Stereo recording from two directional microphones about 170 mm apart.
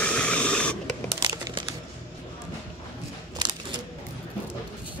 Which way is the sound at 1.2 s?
25° right (ahead or behind).